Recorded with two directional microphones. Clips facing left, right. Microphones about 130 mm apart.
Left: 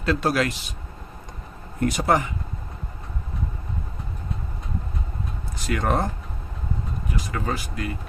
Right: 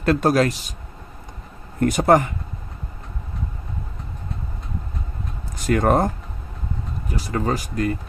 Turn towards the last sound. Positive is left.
turn(degrees=-40)  # may be behind; listen again after turning